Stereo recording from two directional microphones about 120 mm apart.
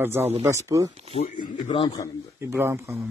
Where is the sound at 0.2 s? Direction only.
60° right (ahead or behind).